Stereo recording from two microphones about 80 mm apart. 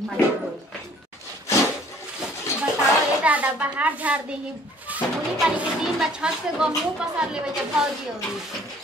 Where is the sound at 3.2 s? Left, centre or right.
Centre.